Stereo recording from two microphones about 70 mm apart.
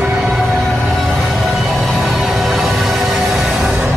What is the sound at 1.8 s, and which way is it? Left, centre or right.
Music, centre.